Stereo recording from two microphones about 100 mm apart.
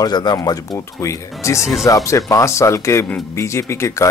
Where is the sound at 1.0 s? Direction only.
30° left (ahead or behind).